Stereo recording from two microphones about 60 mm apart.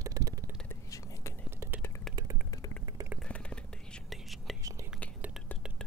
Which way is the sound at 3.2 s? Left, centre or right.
Centre.